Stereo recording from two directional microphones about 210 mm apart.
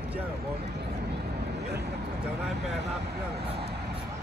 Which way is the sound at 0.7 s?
50° right (ahead or behind).